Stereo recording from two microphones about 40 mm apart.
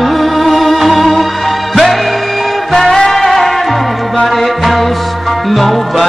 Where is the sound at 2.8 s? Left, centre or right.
Centre.